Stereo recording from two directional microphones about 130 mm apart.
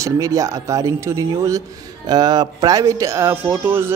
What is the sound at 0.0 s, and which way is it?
Speech, 25° right (ahead or behind).